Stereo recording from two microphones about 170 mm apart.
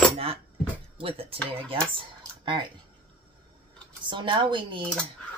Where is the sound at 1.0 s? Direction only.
35° right (ahead or behind).